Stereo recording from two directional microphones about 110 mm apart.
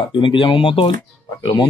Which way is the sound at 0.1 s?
50° left (ahead or behind).